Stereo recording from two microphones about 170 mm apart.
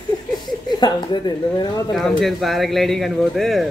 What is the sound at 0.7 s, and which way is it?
Speech, 25° left (ahead or behind).